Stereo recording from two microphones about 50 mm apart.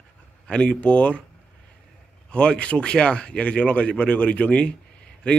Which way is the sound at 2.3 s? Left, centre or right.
Left.